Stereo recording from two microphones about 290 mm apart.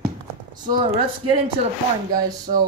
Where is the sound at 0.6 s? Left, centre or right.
Right.